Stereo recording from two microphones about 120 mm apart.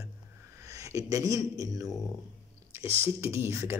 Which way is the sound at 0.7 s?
25° right (ahead or behind).